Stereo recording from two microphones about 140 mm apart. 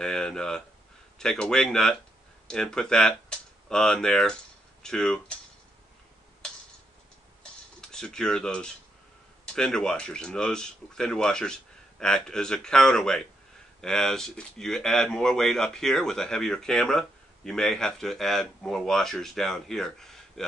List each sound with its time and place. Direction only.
0.0 s speech: 5° left (ahead or behind)
7.9 s speech: 5° left (ahead or behind)